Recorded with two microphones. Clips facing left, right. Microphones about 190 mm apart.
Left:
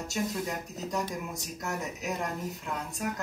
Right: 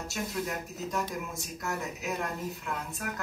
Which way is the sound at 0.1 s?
20° left (ahead or behind).